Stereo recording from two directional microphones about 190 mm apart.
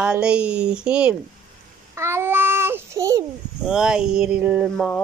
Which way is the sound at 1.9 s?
15° right (ahead or behind).